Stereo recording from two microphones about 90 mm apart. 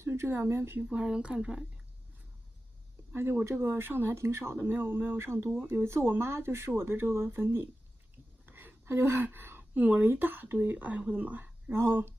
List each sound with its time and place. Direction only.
0.0 s speech: 30° right (ahead or behind)
0.8 s speech: 10° right (ahead or behind)
3.1 s a woman's voice: 25° right (ahead or behind)